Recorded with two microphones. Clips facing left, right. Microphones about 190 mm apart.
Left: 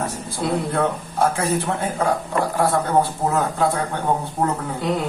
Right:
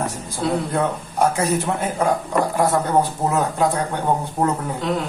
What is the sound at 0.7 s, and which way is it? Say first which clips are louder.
Speech: even; 15° right (ahead or behind).